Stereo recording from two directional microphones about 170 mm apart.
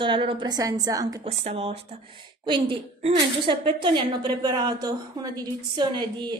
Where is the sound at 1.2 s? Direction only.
40° right (ahead or behind).